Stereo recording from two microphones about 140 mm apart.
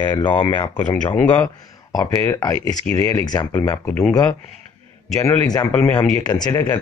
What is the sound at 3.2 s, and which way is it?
Speech, 25° left (ahead or behind).